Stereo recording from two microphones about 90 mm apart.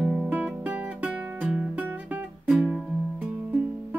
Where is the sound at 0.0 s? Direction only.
5° right (ahead or behind).